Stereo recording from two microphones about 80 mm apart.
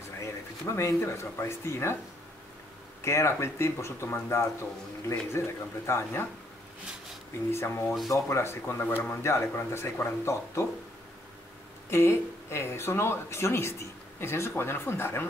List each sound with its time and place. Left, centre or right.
0.2 s speech: left
3.0 s speech: left
7.5 s speech: left
11.9 s speech: left